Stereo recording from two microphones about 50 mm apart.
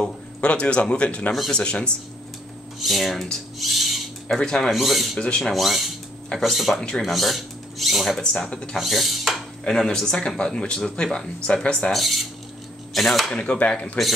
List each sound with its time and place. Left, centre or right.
0.4 s speech: left
2.8 s speech: centre
3.5 s owl: centre
4.3 s speech: centre
4.6 s speech: centre
8.2 s speech: centre
8.7 s mechanisms: centre
9.7 s speech: centre
11.9 s speech: centre
13.3 s speech: left